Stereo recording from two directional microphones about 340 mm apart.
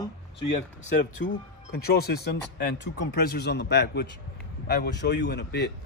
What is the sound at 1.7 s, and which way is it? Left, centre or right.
A man's voice, left.